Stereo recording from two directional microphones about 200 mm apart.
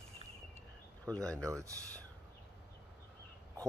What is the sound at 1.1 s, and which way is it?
Speech, 15° right (ahead or behind).